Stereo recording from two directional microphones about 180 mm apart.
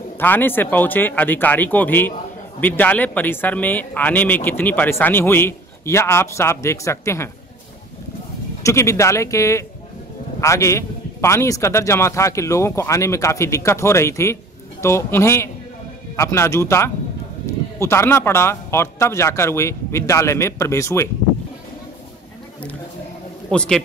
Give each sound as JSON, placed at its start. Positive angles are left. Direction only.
{"t": 0.2, "sound": "a man's voice", "side_deg": 10}
{"t": 8.6, "sound": "a man's voice", "side_deg": 15}
{"t": 23.5, "sound": "a man's voice", "side_deg": 5}